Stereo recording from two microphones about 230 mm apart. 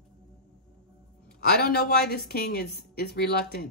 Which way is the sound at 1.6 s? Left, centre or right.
Left.